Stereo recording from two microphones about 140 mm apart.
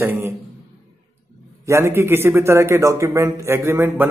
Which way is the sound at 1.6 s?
20° right (ahead or behind).